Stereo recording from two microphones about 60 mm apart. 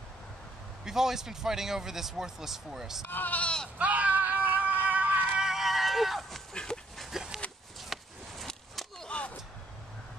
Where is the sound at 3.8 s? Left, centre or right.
Right.